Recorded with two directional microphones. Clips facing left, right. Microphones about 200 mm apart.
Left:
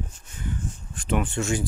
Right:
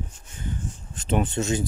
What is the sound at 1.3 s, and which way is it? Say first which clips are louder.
Speech: right 1 dB; 20° right (ahead or behind).